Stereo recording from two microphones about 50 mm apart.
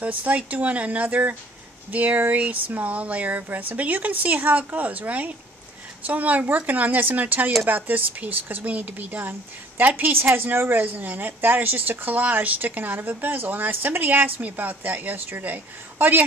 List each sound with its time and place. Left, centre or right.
0.0 s speech: right